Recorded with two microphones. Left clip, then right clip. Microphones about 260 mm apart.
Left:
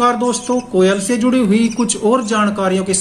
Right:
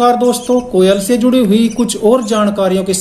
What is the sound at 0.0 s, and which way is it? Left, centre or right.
A woman's voice, centre.